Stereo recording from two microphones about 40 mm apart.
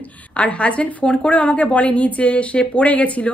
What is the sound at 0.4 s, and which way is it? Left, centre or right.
Speech, left.